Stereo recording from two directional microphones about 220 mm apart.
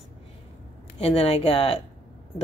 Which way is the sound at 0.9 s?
25° left (ahead or behind).